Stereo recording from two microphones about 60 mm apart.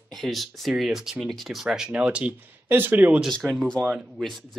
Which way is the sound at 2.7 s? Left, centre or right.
Right.